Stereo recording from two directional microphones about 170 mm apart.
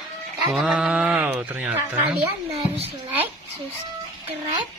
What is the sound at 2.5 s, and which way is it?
Speech, 35° right (ahead or behind).